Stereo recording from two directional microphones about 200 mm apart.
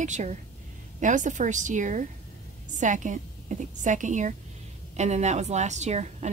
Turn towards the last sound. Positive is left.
turn(degrees=-35)  # may be behind; listen again after turning